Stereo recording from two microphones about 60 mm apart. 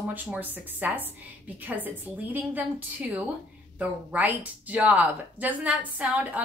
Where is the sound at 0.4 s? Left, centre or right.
Right.